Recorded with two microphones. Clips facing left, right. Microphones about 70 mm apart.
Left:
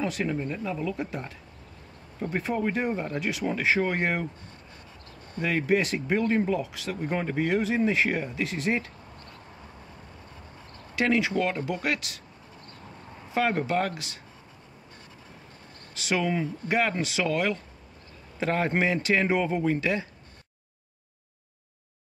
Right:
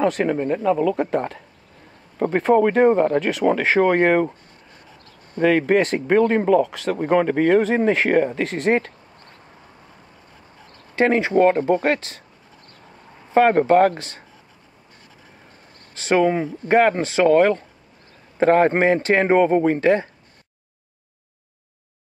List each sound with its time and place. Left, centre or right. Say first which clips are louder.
0.0 s speech: right 9 dB; right
5.4 s speech: right 8 dB; right
11.0 s speech: right 8 dB; right
13.3 s speech: right 11 dB; right
15.9 s speech: right 9 dB; right